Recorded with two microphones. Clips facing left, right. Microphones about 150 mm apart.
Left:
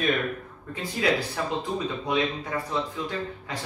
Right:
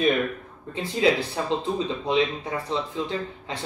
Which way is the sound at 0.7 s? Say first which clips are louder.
Right 4 dB; 25° right (ahead or behind).